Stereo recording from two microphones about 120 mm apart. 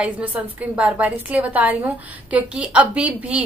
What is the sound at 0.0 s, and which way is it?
A woman's voice, 15° right (ahead or behind).